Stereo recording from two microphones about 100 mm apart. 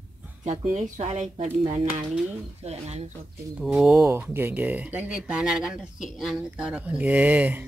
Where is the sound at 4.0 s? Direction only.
25° right (ahead or behind).